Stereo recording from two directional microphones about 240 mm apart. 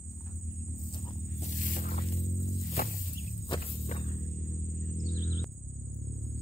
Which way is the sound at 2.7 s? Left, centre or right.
Left.